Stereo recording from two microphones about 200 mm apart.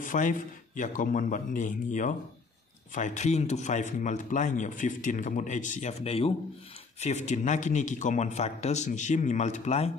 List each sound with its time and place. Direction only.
0.0 s speech: 40° left (ahead or behind)